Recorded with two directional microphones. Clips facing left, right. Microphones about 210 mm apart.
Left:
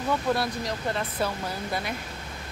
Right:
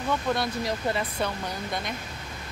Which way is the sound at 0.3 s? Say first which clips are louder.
Even; 5° left (ahead or behind).